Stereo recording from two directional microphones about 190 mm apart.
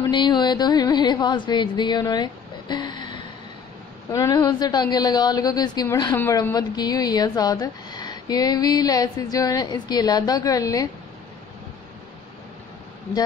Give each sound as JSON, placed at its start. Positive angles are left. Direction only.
{"t": 0.0, "sound": "a woman's voice", "side_deg": 25}